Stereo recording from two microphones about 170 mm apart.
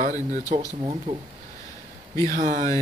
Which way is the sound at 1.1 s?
30° right (ahead or behind).